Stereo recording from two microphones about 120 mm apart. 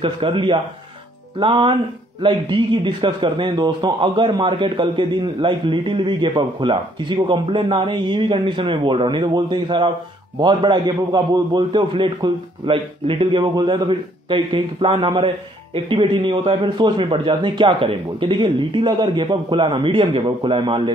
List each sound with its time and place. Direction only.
0.0 s a man's voice: 45° right (ahead or behind)